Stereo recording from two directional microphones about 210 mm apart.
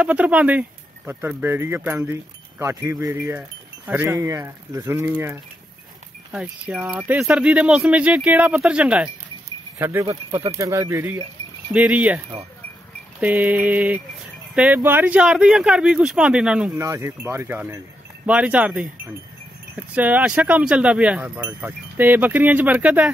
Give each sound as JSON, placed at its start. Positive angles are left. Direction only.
{"t": 0.0, "sound": "speech", "side_deg": -5}
{"t": 10.0, "sound": "speech", "side_deg": -25}
{"t": 13.2, "sound": "speech", "side_deg": -5}